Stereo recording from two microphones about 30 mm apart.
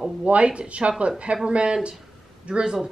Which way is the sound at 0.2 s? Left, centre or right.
Right.